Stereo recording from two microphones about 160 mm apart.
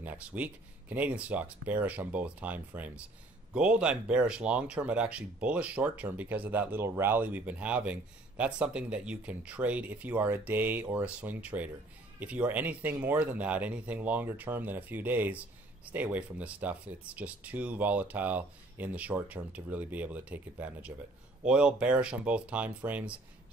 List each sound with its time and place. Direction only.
0.0 s speech: 10° right (ahead or behind)